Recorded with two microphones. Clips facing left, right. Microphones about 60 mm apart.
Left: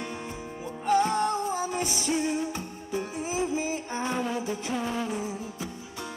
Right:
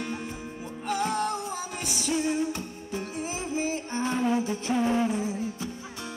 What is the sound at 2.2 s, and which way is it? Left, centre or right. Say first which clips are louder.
Music: right 1 dB; right.